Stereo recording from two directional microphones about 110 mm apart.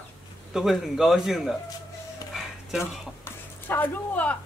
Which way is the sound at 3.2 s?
20° left (ahead or behind).